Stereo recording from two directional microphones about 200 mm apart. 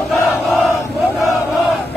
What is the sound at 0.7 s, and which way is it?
Crowd, 15° left (ahead or behind).